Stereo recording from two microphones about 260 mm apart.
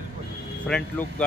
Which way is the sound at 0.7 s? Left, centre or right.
Centre.